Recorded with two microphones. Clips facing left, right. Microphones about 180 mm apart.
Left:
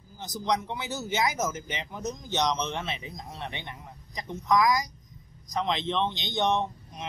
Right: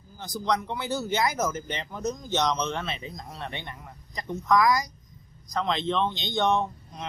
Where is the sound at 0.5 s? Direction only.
15° left (ahead or behind).